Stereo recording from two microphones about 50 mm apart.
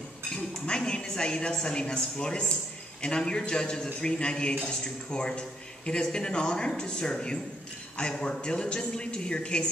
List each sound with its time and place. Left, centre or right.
0.3 s a woman's voice: centre